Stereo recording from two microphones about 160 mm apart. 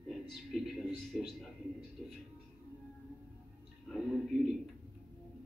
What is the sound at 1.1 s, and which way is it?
Speech, centre (ahead or behind).